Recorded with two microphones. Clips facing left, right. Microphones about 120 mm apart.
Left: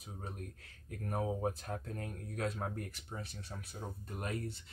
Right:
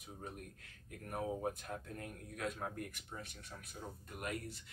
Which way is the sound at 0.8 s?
35° left (ahead or behind).